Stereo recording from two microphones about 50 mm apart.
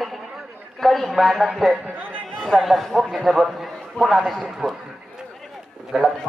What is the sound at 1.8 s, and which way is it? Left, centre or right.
Speech, right.